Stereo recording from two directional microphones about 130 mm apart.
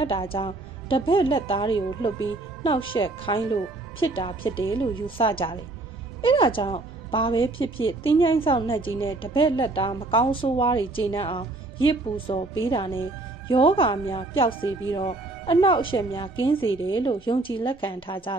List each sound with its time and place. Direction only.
0.0 s a woman's voice: 45° left (ahead or behind)